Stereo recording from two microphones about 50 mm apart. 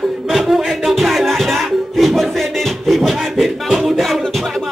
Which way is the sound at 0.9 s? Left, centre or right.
Centre.